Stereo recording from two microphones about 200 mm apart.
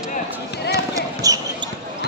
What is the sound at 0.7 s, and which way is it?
Basketball bounce, 15° right (ahead or behind).